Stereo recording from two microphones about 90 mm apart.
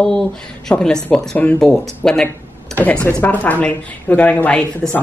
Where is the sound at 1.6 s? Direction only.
5° left (ahead or behind).